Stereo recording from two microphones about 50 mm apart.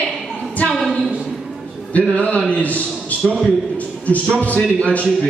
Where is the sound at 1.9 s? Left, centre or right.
Left.